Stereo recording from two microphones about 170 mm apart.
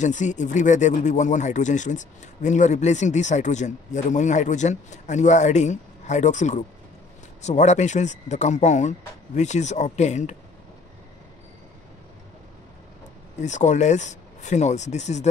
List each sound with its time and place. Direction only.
0.0 s speech: 45° left (ahead or behind)
13.4 s speech: 45° left (ahead or behind)